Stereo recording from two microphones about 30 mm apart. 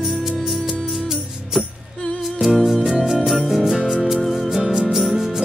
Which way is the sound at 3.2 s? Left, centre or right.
Centre.